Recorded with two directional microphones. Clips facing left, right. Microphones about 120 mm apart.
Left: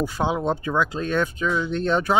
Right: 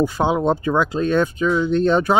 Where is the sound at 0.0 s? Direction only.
25° right (ahead or behind).